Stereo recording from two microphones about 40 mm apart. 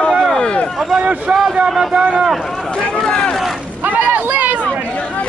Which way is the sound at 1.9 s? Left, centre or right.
Right.